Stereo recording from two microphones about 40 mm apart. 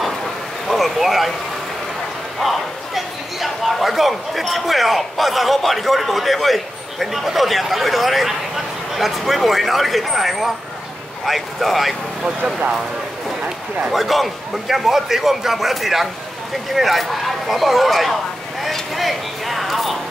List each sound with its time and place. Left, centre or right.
0.7 s vehicle: centre
2.4 s speech: centre
13.4 s speech: right
13.9 s speech: centre